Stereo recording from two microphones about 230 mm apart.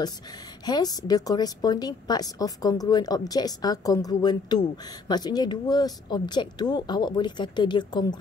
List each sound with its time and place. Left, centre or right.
0.7 s speech: centre